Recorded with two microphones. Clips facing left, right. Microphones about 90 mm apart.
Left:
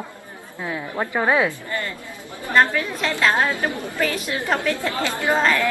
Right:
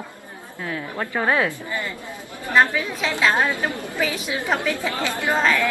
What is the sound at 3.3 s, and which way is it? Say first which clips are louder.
Speech: even; 20° right (ahead or behind).